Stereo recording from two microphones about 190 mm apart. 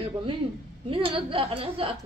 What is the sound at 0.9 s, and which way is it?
A woman's voice, 30° right (ahead or behind).